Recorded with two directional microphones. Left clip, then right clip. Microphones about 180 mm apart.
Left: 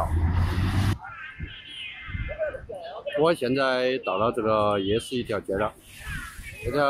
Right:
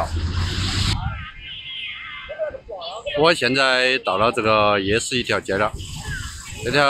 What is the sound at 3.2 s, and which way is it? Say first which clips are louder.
Speech: right 6 dB; 5° right (ahead or behind).